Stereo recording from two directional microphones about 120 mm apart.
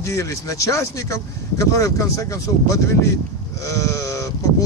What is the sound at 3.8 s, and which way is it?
Sheep, 25° left (ahead or behind).